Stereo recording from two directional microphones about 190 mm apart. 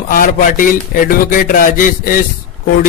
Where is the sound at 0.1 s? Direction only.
45° left (ahead or behind).